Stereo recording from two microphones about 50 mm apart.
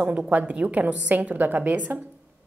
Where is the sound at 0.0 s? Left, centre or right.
Right.